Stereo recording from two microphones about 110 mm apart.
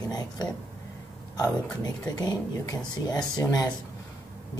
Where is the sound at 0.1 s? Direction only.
35° left (ahead or behind).